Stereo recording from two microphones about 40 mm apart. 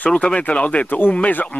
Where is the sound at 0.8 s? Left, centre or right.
Left.